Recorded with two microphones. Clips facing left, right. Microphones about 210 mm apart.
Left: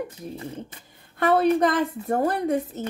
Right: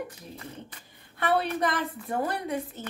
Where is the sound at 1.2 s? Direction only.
45° left (ahead or behind).